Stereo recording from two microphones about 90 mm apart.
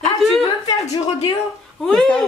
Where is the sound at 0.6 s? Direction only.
45° left (ahead or behind).